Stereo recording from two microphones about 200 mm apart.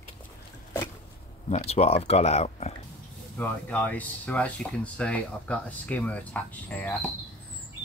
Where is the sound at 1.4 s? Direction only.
30° left (ahead or behind).